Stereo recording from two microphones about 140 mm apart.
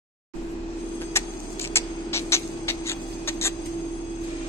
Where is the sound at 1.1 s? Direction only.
20° left (ahead or behind).